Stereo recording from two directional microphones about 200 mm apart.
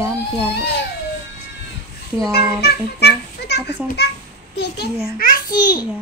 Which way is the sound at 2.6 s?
55° left (ahead or behind).